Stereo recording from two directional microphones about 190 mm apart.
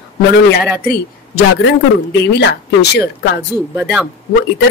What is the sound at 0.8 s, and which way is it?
Speech, 55° left (ahead or behind).